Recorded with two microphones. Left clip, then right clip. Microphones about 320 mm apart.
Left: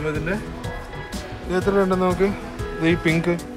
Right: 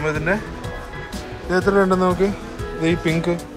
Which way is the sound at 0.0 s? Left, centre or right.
Centre.